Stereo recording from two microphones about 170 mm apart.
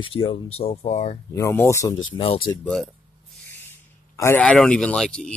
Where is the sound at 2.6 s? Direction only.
5° left (ahead or behind).